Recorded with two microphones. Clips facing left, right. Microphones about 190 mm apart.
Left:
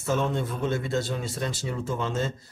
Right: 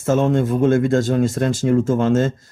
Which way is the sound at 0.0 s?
50° right (ahead or behind).